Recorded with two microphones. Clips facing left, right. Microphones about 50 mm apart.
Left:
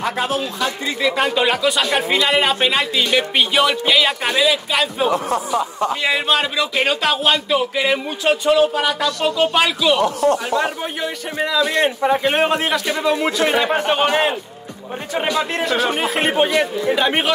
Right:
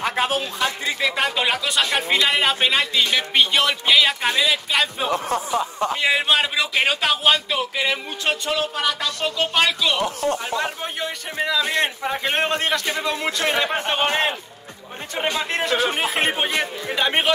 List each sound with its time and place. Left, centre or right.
0.0 s speech: right
0.8 s speech: centre
5.1 s speech: left
6.0 s speech: centre
10.0 s speech: left
10.6 s speech: centre
15.3 s speech: centre